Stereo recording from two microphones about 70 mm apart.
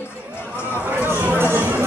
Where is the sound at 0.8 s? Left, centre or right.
Right.